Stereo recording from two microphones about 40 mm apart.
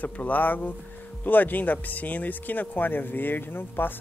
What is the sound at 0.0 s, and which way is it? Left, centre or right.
Speech, left.